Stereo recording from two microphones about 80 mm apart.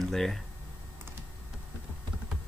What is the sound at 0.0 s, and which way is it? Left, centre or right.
Speech, centre.